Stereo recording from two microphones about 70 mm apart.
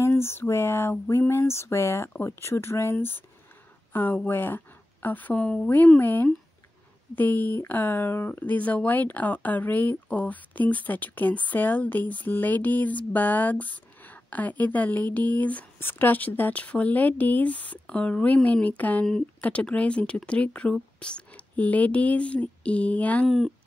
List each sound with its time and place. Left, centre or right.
0.0 s a sound: left
3.9 s a woman's voice: left
23.2 s speech: centre